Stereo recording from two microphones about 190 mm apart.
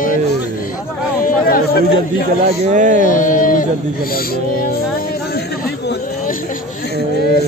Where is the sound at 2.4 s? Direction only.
40° right (ahead or behind).